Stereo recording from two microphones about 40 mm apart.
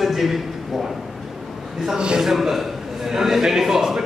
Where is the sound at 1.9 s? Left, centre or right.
Right.